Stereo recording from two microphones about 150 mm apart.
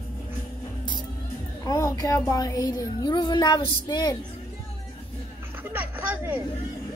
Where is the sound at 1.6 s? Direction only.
25° left (ahead or behind).